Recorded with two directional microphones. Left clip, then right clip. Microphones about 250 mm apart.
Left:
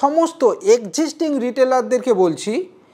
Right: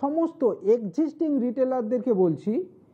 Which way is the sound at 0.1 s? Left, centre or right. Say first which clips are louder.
Left 9 dB; centre.